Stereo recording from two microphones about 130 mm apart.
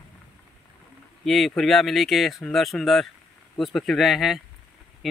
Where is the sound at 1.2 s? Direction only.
Centre (ahead or behind).